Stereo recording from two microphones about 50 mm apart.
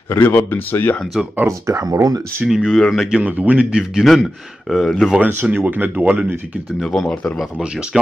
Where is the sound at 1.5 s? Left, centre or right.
Right.